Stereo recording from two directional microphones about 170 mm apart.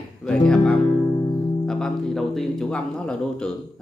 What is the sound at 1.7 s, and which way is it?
Speech, 5° left (ahead or behind).